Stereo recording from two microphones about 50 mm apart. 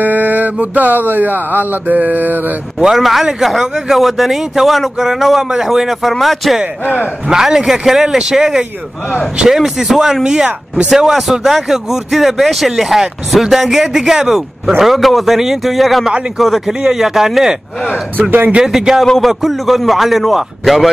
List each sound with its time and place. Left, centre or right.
0.0 s a sound: right
2.8 s a man's voice: centre
6.8 s speech: left
7.2 s a man's voice: centre
18.3 s speech: right
18.6 s a man's voice: centre